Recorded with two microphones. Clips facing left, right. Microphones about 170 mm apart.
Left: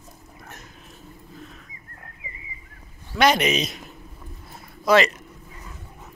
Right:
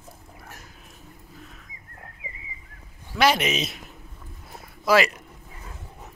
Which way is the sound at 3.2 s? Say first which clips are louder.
Left 2 dB; centre (ahead or behind).